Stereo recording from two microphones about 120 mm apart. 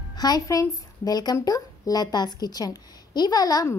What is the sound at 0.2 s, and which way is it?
A woman's voice, 30° left (ahead or behind).